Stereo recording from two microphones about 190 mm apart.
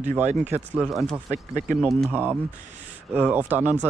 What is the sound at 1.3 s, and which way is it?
Speech, 40° right (ahead or behind).